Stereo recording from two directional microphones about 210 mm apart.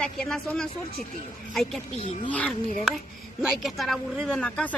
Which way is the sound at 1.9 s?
30° left (ahead or behind).